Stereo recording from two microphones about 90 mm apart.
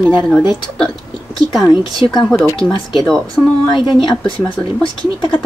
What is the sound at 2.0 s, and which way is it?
Speech, 65° left (ahead or behind).